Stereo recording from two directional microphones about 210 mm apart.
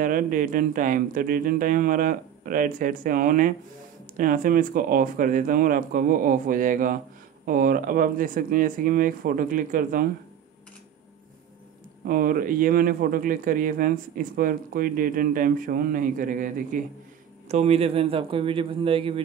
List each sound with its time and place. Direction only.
0.0 s a man's voice: 40° right (ahead or behind)
12.1 s a man's voice: 40° right (ahead or behind); by 19.2 s 25° right (ahead or behind)